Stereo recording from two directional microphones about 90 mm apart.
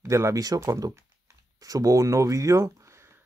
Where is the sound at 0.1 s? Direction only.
35° right (ahead or behind).